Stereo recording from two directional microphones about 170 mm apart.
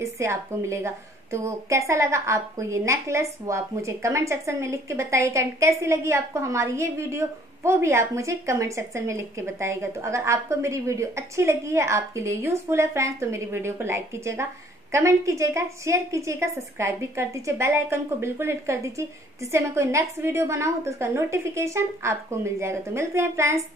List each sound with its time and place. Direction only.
0.0 s a woman's voice: 15° right (ahead or behind)